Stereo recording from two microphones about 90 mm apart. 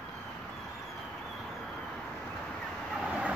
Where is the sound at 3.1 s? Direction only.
10° right (ahead or behind).